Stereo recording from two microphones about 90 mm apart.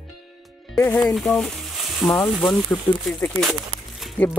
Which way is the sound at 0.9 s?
5° left (ahead or behind).